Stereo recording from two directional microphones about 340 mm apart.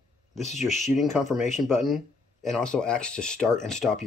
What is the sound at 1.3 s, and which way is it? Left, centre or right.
Speech, left.